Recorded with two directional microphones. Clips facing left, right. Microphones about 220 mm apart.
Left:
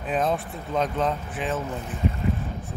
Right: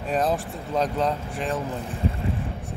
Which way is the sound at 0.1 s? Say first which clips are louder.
Right 1 dB; centre (ahead or behind).